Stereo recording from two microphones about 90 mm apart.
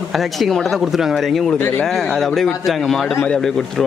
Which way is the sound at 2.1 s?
5° left (ahead or behind).